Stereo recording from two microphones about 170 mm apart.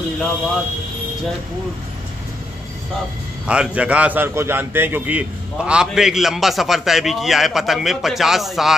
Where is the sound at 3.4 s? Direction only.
5° right (ahead or behind).